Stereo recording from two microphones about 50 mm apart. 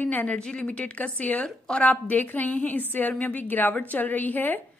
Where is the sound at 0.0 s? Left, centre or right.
Left.